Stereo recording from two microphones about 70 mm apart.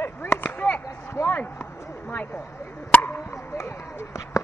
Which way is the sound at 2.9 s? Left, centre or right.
Left.